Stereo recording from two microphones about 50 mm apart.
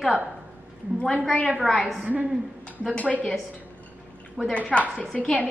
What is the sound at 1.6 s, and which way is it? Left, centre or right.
Speech, centre.